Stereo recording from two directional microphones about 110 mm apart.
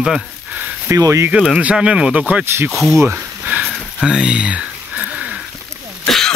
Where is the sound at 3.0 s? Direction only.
15° right (ahead or behind).